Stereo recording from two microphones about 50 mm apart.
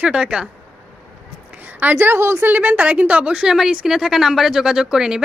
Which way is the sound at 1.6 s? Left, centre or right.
Right.